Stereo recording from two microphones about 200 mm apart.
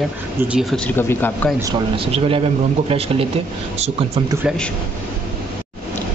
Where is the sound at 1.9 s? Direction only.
25° right (ahead or behind).